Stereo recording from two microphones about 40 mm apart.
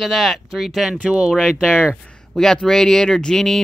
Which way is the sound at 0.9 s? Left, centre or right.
Right.